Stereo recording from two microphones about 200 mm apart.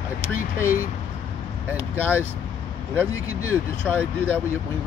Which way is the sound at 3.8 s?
10° left (ahead or behind).